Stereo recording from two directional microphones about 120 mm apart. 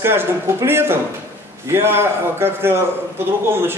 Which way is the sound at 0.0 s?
20° right (ahead or behind).